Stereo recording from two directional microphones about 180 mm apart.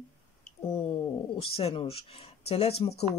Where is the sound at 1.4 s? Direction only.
35° left (ahead or behind).